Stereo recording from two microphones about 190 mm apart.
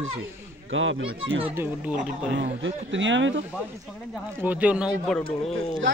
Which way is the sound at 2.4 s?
80° right.